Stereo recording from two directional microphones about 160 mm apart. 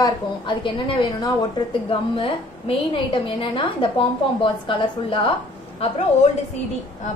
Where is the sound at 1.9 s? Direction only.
35° left (ahead or behind).